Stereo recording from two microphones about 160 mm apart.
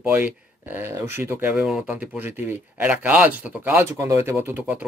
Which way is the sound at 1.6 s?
5° right (ahead or behind).